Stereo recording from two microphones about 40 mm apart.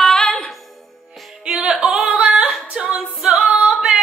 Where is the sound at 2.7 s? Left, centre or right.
Right.